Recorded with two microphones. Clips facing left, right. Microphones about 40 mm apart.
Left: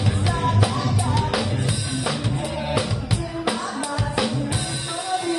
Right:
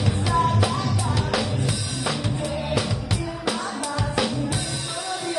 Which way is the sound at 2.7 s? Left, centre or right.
Centre.